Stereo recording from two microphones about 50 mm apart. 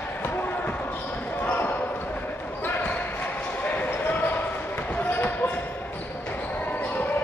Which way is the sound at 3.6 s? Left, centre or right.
Left.